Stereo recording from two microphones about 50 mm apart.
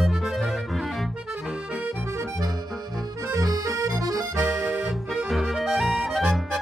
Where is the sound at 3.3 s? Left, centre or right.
Right.